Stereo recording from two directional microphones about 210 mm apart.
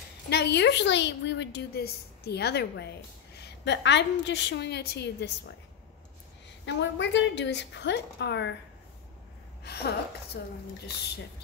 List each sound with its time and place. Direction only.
0.3 s a woman's voice: 50° left (ahead or behind)
6.6 s a woman's voice: 55° left (ahead or behind)
9.6 s a woman's voice: 50° left (ahead or behind)